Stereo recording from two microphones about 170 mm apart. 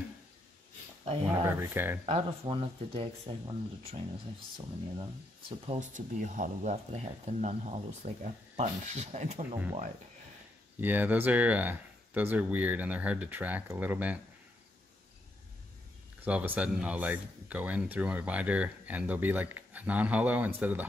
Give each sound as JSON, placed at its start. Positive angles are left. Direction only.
{"t": 1.4, "sound": "speech", "side_deg": -15}
{"t": 2.0, "sound": "speech", "side_deg": -30}
{"t": 5.7, "sound": "speech", "side_deg": -45}
{"t": 10.8, "sound": "speech", "side_deg": -10}
{"t": 16.3, "sound": "speech", "side_deg": -10}